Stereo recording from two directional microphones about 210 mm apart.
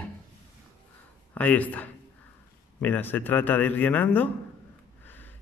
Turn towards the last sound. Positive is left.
turn(degrees=10)  # may be behind; listen again after turning